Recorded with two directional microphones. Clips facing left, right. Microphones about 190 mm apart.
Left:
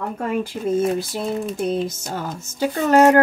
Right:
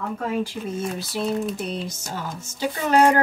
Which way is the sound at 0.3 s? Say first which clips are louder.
Left 7 dB; 55° left (ahead or behind).